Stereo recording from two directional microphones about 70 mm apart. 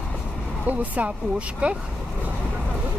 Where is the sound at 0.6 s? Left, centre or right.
Right.